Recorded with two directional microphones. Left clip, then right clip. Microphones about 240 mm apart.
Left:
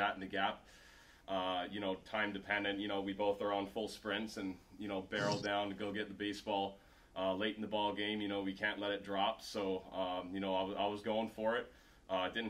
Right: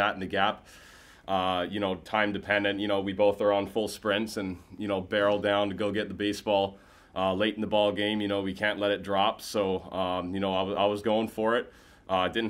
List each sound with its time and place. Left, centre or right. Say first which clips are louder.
0.0 s speech: right 10 dB; right